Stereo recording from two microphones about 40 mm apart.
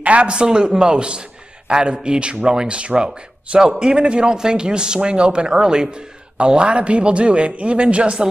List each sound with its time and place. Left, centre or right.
0.0 s a man's voice: right